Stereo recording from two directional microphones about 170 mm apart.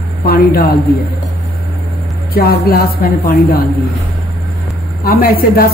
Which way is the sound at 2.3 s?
65° left (ahead or behind).